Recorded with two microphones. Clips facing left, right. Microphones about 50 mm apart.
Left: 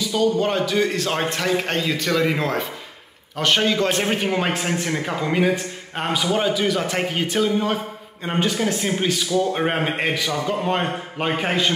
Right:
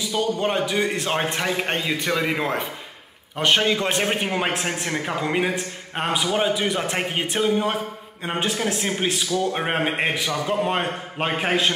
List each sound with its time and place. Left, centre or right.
0.0 s a man's voice: centre
7.5 s a man's voice: centre